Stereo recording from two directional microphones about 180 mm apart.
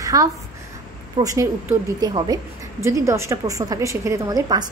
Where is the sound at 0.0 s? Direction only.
20° right (ahead or behind).